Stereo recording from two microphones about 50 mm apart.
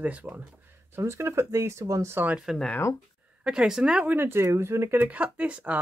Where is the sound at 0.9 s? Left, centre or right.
Right.